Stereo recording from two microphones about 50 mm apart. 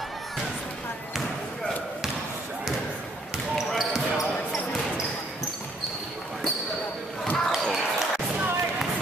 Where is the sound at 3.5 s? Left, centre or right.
Centre.